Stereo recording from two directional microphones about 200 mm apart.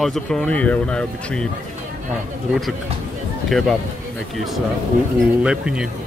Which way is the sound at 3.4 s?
Centre (ahead or behind).